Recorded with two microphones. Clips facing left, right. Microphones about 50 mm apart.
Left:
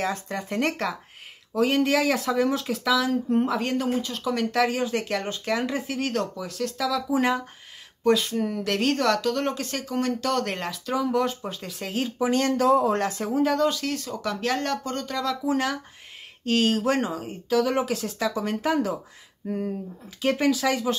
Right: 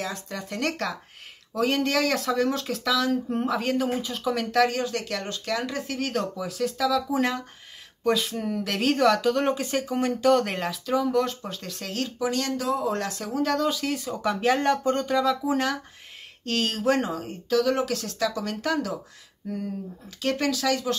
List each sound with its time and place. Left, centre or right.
0.0 s speech: left
1.5 s speech: centre
4.9 s speech: left
5.9 s speech: centre
12.2 s speech: left
13.4 s speech: centre
20.1 s speech: centre